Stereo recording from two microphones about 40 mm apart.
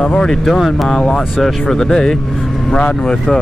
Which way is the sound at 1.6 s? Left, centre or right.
Centre.